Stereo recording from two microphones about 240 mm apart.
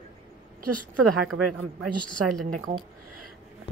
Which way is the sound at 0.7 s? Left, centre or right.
Right.